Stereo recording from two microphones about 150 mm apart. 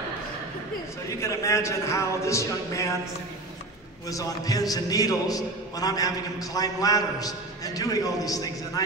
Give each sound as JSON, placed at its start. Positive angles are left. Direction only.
{"t": 1.2, "sound": "a man's voice", "side_deg": 20}
{"t": 4.1, "sound": "a man's voice", "side_deg": 25}